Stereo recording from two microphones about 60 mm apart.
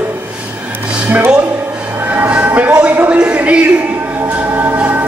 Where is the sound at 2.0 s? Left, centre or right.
Right.